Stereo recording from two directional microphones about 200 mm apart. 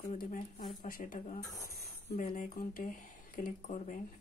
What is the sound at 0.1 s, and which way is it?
Speech, 40° left (ahead or behind).